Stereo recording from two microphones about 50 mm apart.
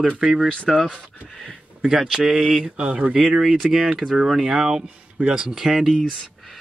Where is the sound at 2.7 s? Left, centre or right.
Right.